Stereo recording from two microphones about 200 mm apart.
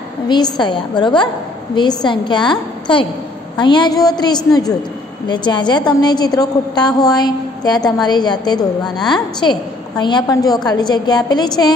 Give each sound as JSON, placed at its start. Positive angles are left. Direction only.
{"t": 0.3, "sound": "a woman's voice", "side_deg": 20}
{"t": 8.8, "sound": "a woman's voice", "side_deg": 0}
{"t": 9.1, "sound": "a woman's voice", "side_deg": 20}